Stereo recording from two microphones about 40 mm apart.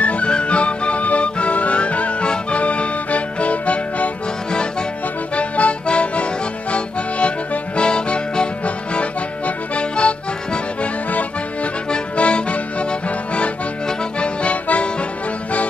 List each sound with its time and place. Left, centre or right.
0.0 s music: left
5.3 s accordion: left
6.7 s music: left
9.8 s accordion: left
11.9 s accordion: left
14.2 s accordion: left